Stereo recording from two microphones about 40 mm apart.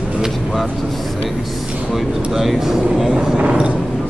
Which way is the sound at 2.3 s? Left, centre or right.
Centre.